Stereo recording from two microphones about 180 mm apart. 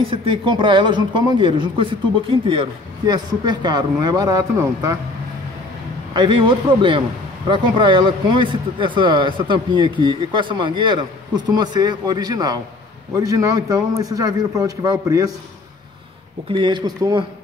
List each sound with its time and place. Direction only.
0.1 s speech: 30° right (ahead or behind)
6.1 s speech: 25° right (ahead or behind)
16.4 s speech: 25° right (ahead or behind)